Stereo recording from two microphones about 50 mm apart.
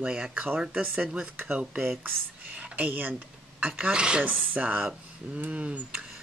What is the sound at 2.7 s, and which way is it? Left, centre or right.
Speech, right.